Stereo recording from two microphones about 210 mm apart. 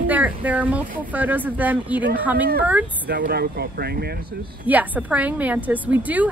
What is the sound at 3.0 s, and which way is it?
Speech, 50° right (ahead or behind).